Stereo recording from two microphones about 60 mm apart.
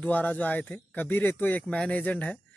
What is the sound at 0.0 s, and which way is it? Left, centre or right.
Speech, left.